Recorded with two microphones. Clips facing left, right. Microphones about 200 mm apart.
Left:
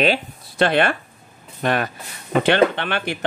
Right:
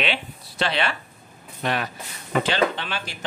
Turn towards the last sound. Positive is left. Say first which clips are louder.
# left 7 dB
turn(degrees=60)  # may be behind; listen again after turning